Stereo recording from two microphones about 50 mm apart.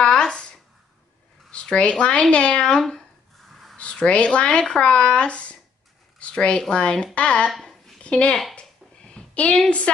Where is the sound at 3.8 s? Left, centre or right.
Left.